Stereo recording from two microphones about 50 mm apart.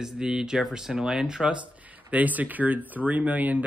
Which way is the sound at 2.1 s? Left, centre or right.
Right.